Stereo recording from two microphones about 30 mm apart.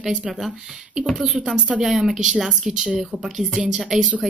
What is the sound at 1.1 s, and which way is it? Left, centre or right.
Speech, centre.